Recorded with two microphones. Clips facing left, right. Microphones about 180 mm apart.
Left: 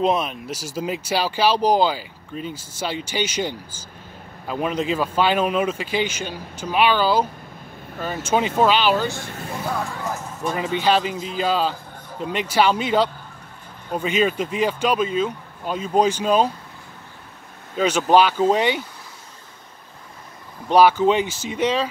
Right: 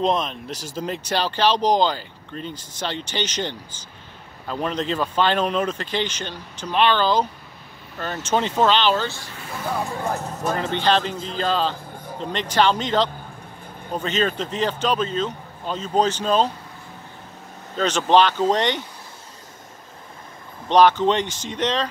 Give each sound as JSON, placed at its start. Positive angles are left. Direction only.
{"t": 0.0, "sound": "speech", "side_deg": 5}
{"t": 9.8, "sound": "speech", "side_deg": -20}
{"t": 10.5, "sound": "speech", "side_deg": 10}
{"t": 17.7, "sound": "speech", "side_deg": 10}
{"t": 20.6, "sound": "speech", "side_deg": 10}